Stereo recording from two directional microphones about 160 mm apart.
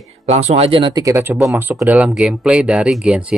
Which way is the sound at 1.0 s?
20° right (ahead or behind).